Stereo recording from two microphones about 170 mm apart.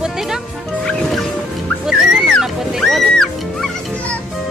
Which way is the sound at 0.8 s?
Centre (ahead or behind).